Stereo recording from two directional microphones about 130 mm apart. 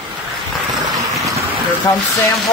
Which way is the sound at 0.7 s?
Centre (ahead or behind).